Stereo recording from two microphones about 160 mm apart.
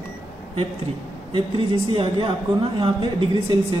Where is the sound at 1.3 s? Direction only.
35° right (ahead or behind).